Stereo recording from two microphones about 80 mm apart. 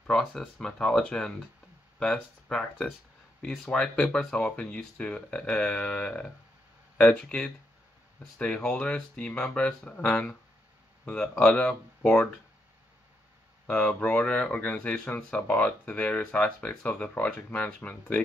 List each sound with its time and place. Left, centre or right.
0.0 s speech: centre
13.7 s speech: centre